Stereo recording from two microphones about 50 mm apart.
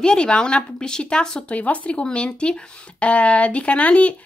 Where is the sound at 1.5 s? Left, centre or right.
Left.